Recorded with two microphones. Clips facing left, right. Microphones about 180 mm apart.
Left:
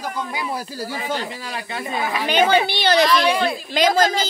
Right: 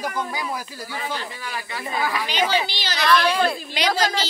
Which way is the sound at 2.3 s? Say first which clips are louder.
Left 10 dB; 55° left (ahead or behind).